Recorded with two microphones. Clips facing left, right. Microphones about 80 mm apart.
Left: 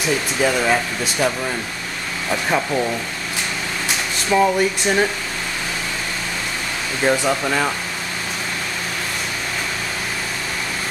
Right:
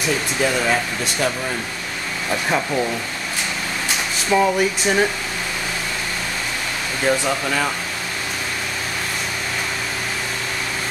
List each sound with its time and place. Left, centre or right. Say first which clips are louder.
0.4 s speech: left 2 dB; centre
2.5 s speech: left 1 dB; centre
4.3 s speech: left 1 dB; centre
7.1 s speech: left 2 dB; centre